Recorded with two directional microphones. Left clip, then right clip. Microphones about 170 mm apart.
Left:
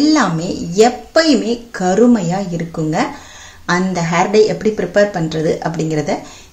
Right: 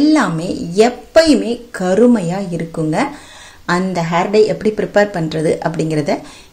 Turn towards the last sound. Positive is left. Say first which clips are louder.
# right 1 dB
turn(degrees=-30)  # may be behind; listen again after turning